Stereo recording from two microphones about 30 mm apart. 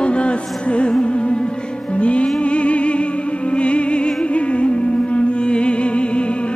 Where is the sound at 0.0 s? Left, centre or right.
Left.